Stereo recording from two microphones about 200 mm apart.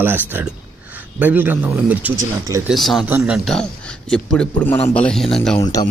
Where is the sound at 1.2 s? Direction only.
10° right (ahead or behind).